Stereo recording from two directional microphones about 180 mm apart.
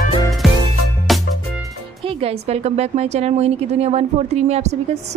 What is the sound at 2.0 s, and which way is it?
A woman's voice, 30° right (ahead or behind).